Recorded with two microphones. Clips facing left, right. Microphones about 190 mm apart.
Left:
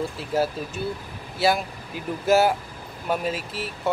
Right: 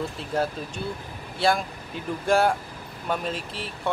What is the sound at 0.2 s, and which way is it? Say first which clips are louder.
Speech: left 3 dB; 5° left (ahead or behind).